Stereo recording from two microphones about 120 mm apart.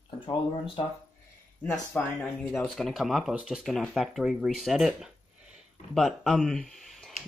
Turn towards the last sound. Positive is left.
turn(degrees=0)  # may be behind; listen again after turning